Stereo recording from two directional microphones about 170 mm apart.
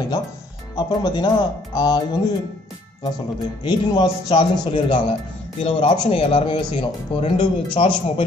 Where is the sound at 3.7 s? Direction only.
25° left (ahead or behind).